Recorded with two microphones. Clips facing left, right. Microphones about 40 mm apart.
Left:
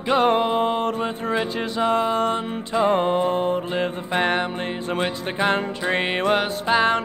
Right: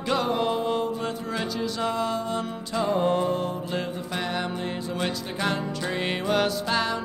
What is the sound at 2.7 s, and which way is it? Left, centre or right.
Music, left.